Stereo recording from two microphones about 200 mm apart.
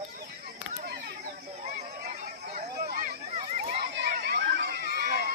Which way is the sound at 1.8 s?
40° right (ahead or behind).